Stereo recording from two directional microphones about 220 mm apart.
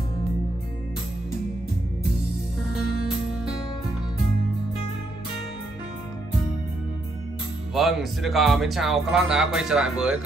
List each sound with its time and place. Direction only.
7.7 s speech: centre (ahead or behind)